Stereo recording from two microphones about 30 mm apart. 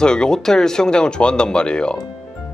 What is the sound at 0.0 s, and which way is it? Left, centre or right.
Speech, left.